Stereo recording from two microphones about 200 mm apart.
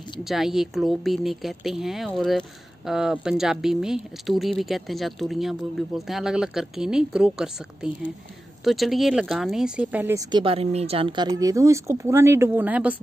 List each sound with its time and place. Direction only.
0.2 s a woman's voice: centre (ahead or behind)
10.3 s speech: 25° right (ahead or behind); by 12.9 s 10° right (ahead or behind)